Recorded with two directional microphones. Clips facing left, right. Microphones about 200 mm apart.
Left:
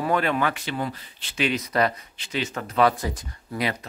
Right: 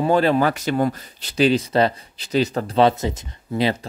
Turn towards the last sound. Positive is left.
turn(degrees=-25)  # may be behind; listen again after turning